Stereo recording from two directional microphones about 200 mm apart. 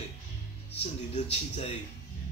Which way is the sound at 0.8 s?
30° left (ahead or behind).